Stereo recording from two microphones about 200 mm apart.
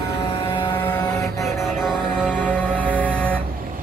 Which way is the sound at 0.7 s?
15° left (ahead or behind).